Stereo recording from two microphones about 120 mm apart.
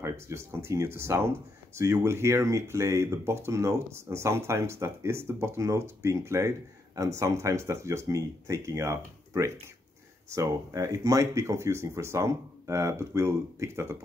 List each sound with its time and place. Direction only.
0.0 s speech: 20° right (ahead or behind)